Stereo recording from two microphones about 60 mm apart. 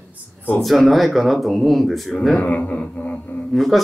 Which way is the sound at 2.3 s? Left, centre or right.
Left.